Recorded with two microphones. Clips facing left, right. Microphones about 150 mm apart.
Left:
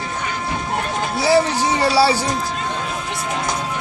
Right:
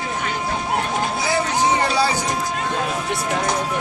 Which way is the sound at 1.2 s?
35° left (ahead or behind).